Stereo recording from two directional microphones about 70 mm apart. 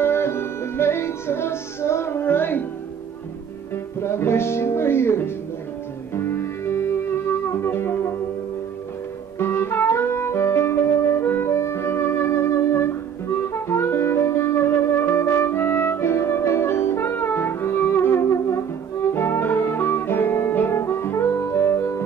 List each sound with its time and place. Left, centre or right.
0.0 s music: left
3.7 s speech: left
6.1 s music: left
9.4 s music: left